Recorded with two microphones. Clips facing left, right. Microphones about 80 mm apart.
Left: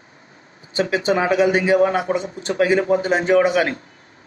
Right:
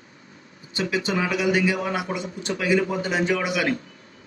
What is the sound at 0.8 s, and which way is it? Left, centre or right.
A man's voice, left.